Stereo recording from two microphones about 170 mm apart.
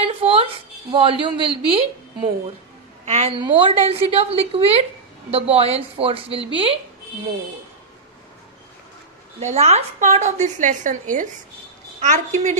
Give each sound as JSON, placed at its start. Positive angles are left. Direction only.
{"t": 0.0, "sound": "a sound", "side_deg": -35}
{"t": 0.9, "sound": "a man's voice", "side_deg": -30}
{"t": 3.1, "sound": "a woman's voice", "side_deg": -40}
{"t": 9.4, "sound": "a woman's voice", "side_deg": -40}